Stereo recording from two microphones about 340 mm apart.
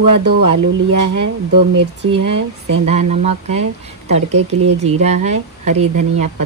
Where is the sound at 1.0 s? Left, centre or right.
Right.